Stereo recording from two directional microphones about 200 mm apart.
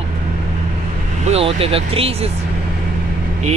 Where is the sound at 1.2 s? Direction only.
30° right (ahead or behind).